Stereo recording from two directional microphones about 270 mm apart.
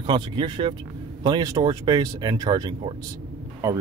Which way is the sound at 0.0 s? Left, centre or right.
Centre.